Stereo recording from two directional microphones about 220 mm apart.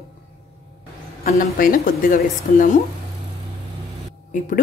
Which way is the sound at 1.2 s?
40° left (ahead or behind).